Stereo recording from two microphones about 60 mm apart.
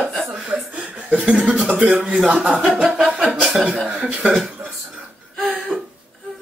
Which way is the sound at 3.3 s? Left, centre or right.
Centre.